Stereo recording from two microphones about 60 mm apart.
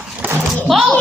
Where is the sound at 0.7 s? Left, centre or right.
Centre.